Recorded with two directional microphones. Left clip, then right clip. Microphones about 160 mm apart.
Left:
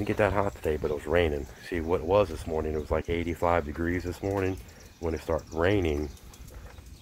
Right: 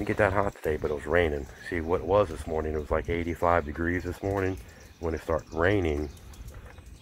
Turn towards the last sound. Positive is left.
turn(degrees=15)  # may be behind; listen again after turning